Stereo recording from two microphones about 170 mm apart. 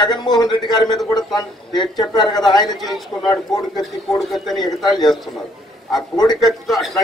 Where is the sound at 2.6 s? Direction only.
Centre (ahead or behind).